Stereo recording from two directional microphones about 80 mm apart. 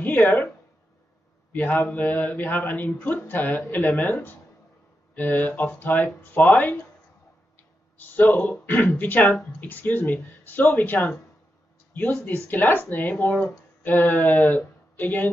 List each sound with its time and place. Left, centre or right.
0.0 s speech: left
1.5 s speech: left
8.0 s speech: left